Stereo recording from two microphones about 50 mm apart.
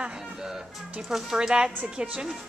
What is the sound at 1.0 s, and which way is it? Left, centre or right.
Speech, centre.